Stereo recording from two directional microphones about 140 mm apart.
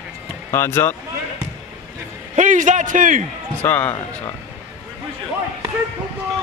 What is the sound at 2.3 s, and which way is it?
Speech, 65° right (ahead or behind).